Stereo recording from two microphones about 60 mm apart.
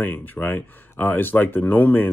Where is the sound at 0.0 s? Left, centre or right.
Left.